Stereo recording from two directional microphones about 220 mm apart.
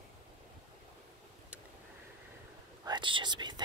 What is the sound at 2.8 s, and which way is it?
Speech, 20° right (ahead or behind).